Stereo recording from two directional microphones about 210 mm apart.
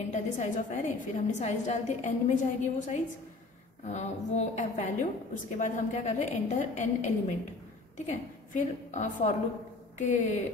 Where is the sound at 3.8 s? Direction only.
35° left (ahead or behind).